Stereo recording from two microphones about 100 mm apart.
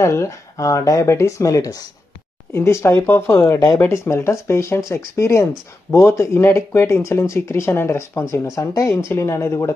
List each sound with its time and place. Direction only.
0.0 s speech: 30° left (ahead or behind)
2.5 s speech: 25° left (ahead or behind)
3.5 s speech: 35° left (ahead or behind)